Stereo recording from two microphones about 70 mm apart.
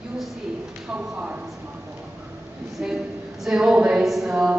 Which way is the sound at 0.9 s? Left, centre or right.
Right.